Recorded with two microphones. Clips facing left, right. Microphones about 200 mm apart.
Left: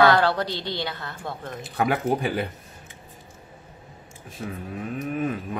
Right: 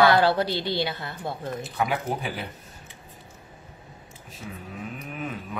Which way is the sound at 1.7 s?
55° left (ahead or behind).